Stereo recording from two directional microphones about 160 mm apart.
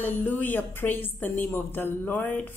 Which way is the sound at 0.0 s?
10° left (ahead or behind).